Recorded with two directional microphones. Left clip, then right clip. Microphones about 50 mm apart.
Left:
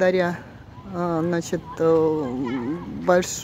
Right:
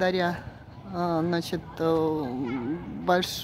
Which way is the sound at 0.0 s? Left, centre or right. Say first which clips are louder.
Left 5 dB; left.